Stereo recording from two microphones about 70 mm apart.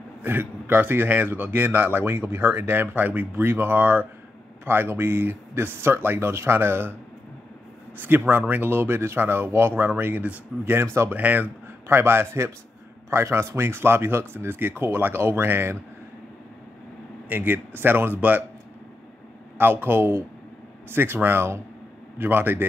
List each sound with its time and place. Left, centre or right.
0.2 s speech: right
8.0 s speech: right
11.9 s speech: right
17.3 s speech: right
19.6 s speech: right